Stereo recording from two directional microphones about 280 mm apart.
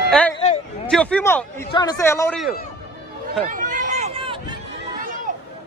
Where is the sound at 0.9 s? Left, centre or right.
Centre.